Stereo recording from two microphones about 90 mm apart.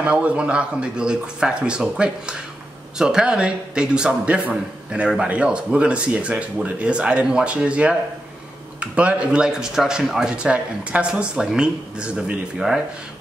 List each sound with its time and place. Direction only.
0.0 s a man's voice: 15° right (ahead or behind)